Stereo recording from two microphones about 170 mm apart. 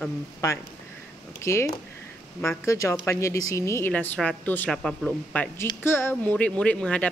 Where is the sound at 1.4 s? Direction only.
15° left (ahead or behind).